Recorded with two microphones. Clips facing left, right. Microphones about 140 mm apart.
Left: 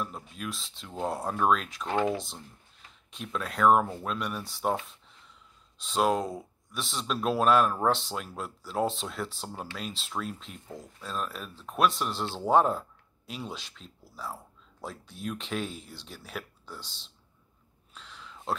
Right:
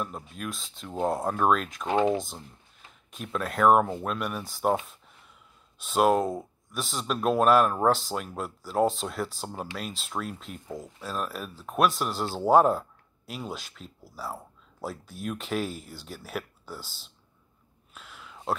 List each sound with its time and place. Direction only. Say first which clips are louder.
0.0 s speech: right 2 dB; centre (ahead or behind)
1.1 s speech: right 4 dB; 15° right (ahead or behind)
1.4 s speech: right 1 dB; 5° right (ahead or behind)
1.9 s speech: right 4 dB; 20° right (ahead or behind)
3.3 s speech: right 2 dB; 5° right (ahead or behind)
5.9 s speech: right 4 dB; 5° right (ahead or behind)
17.9 s a sound: right 1 dB; 5° right (ahead or behind)